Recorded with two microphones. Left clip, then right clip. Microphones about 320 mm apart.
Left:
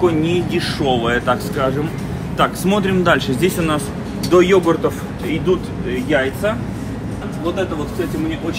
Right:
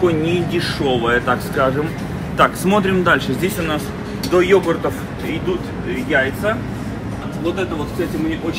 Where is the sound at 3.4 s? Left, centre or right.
Left.